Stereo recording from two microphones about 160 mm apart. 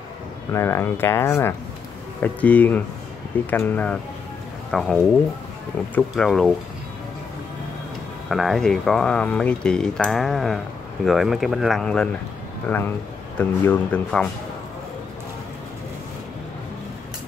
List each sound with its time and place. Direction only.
0.5 s speech: 15° left (ahead or behind)
5.9 s speech: 5° left (ahead or behind)
8.3 s speech: centre (ahead or behind)